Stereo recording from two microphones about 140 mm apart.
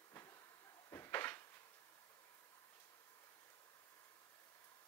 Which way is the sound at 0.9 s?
20° left (ahead or behind).